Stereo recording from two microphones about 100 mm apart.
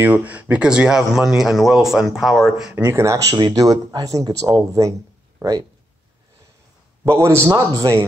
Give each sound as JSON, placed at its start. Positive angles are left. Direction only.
{"t": 0.0, "sound": "speech", "side_deg": -15}
{"t": 2.7, "sound": "speech", "side_deg": -25}
{"t": 7.1, "sound": "speech", "side_deg": -25}